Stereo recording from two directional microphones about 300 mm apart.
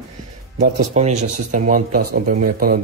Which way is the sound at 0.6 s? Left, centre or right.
Right.